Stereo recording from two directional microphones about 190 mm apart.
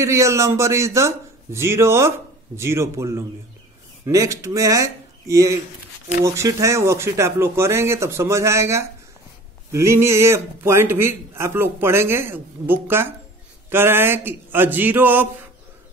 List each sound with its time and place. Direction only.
0.0 s speech: 15° right (ahead or behind)